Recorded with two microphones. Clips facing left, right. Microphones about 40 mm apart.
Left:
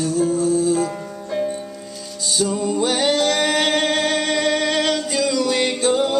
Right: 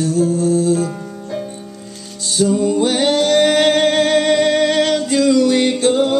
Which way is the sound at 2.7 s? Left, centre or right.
Right.